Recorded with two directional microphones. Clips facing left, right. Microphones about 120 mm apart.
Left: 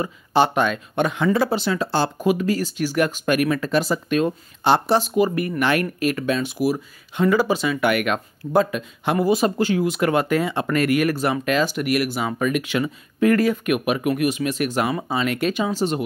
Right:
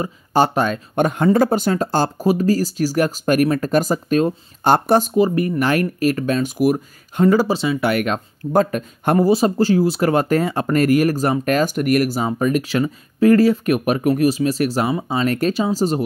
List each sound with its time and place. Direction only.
0.3 s speech: 40° right (ahead or behind)
5.1 s speech: 30° right (ahead or behind)
9.3 s speech: 35° right (ahead or behind)